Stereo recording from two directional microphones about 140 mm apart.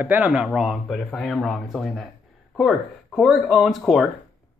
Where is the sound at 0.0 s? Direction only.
10° right (ahead or behind).